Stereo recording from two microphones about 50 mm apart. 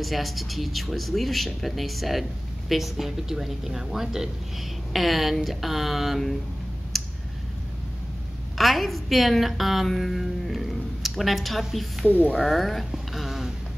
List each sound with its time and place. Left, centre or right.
0.0 s a woman's voice: centre
6.9 s clicking: centre
8.5 s a woman's voice: centre
12.1 s speech: left
12.4 s speech: centre
13.1 s a sound: centre